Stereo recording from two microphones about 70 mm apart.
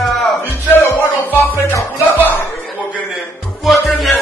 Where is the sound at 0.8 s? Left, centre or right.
Left.